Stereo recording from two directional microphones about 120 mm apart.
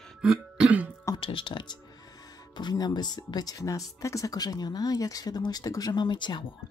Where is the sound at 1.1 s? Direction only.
45° left (ahead or behind).